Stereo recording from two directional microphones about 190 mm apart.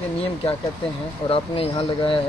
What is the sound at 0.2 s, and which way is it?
Speech, 30° left (ahead or behind).